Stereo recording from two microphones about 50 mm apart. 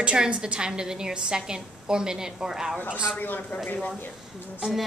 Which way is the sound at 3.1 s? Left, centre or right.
Left.